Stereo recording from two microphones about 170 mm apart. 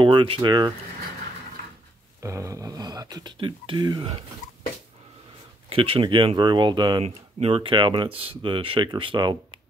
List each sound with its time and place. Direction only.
0.0 s speech: 30° right (ahead or behind)
2.2 s speech: 20° right (ahead or behind)
5.7 s speech: 30° right (ahead or behind)
7.1 s speech: 35° right (ahead or behind)